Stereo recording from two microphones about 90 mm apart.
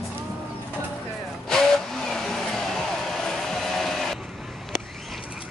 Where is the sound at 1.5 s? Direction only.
5° left (ahead or behind).